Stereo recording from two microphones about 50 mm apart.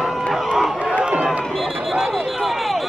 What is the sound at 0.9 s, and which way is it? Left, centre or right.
Run, right.